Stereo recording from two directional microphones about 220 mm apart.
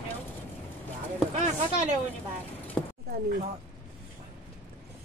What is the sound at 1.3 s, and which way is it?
Speech, 30° right (ahead or behind).